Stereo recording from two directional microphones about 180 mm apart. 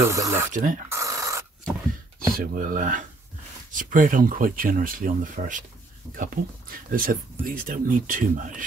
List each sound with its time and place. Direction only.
0.0 s speech: 15° right (ahead or behind)
0.5 s speech: 50° right (ahead or behind)
0.8 s a sound: 15° right (ahead or behind)
2.3 s speech: 50° right (ahead or behind)